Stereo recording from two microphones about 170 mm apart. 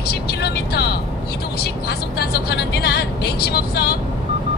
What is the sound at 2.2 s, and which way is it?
Vehicle, 70° left (ahead or behind).